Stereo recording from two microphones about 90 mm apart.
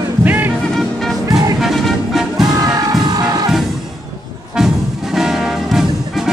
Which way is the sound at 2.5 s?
45° right (ahead or behind).